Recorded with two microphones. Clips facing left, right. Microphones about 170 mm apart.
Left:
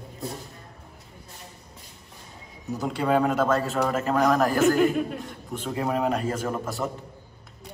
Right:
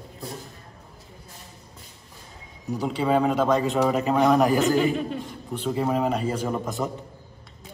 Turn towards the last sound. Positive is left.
turn(degrees=0)  # may be behind; listen again after turning